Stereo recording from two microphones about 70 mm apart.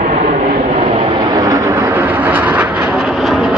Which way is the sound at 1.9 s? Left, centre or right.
Right.